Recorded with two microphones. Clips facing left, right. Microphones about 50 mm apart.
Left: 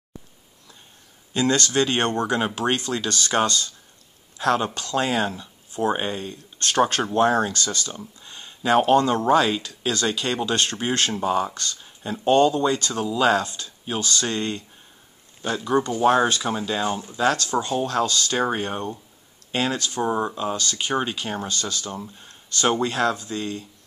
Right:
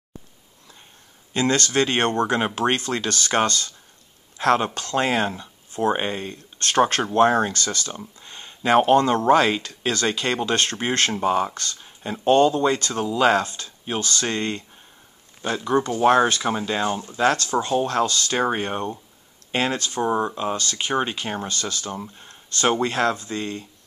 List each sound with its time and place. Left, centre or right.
1.3 s speech: right
7.9 s speech: centre
8.3 s a sound: right
8.9 s speech: right
17.2 s speech: right
17.8 s speech: right
20.0 s speech: centre
20.7 s speech: centre
21.9 s speech: centre
22.8 s speech: right